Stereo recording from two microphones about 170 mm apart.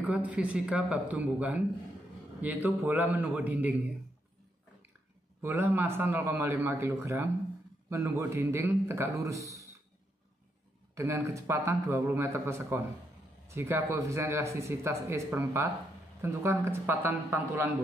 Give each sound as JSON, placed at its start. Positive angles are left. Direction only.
{"t": 0.0, "sound": "speech", "side_deg": -10}
{"t": 5.4, "sound": "speech", "side_deg": -15}
{"t": 11.0, "sound": "speech", "side_deg": -15}